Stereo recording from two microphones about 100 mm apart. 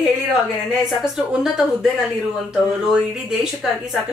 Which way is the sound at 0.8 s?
5° right (ahead or behind).